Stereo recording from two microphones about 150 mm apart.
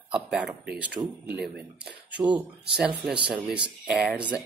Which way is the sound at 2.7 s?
10° right (ahead or behind).